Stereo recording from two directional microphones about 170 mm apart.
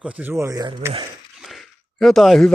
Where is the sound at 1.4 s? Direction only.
Centre (ahead or behind).